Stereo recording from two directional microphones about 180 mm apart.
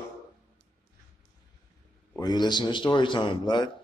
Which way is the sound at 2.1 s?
25° left (ahead or behind).